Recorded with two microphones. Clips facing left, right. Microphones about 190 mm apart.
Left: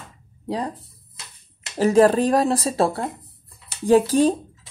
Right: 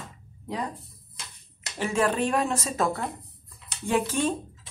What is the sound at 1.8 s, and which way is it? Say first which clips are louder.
Speech: left 9 dB; 40° left (ahead or behind).